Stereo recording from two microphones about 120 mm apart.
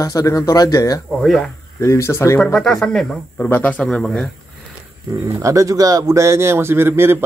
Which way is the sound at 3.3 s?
15° left (ahead or behind).